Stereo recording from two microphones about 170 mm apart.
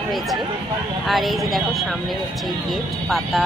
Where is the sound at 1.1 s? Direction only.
Centre (ahead or behind).